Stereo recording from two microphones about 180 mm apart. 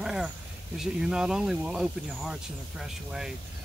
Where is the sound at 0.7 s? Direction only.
5° right (ahead or behind).